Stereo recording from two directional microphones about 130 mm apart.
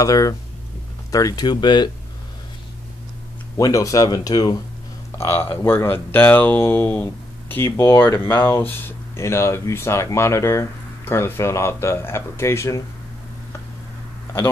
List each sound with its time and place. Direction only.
0.0 s speech: 30° left (ahead or behind)
3.5 s speech: 25° left (ahead or behind)